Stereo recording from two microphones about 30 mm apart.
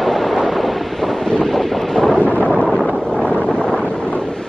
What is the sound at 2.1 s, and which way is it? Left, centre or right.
Thunder, left.